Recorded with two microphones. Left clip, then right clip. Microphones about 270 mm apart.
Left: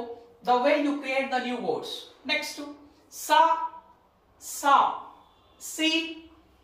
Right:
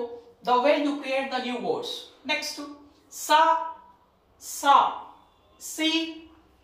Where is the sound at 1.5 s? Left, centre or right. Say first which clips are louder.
Right 1 dB; centre.